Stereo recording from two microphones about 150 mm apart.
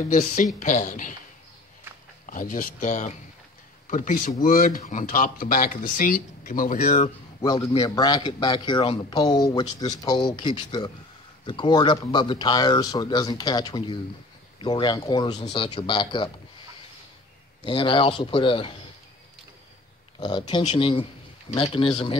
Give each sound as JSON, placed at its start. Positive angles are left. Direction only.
{"t": 0.6, "sound": "speech", "side_deg": 55}
{"t": 2.2, "sound": "speech", "side_deg": 60}
{"t": 7.4, "sound": "a man's voice", "side_deg": 25}
{"t": 17.6, "sound": "speech", "side_deg": 35}
{"t": 20.2, "sound": "a man's voice", "side_deg": 30}